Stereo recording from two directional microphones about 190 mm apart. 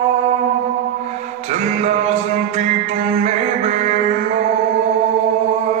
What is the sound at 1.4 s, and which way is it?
Music, 35° right (ahead or behind).